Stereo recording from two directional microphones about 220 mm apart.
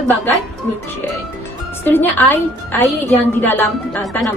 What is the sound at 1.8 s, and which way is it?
A woman's voice, 10° left (ahead or behind).